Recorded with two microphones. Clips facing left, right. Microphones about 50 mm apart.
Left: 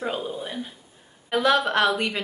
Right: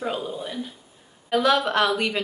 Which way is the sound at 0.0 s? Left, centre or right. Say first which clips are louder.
Even; centre.